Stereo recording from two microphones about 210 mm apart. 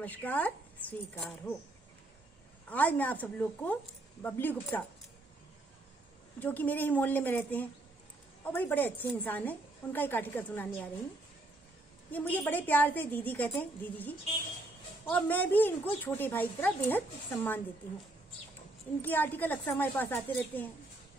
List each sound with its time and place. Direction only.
0.0 s a woman's voice: 10° left (ahead or behind)
2.7 s a woman's voice: 10° left (ahead or behind)
6.4 s a woman's voice: 10° left (ahead or behind)
12.1 s a woman's voice: 10° left (ahead or behind)
18.9 s a woman's voice: 10° left (ahead or behind)